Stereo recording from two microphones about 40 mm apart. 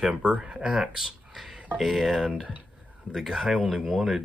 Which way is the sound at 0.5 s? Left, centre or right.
Right.